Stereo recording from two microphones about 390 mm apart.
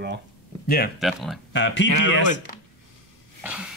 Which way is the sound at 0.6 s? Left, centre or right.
Left.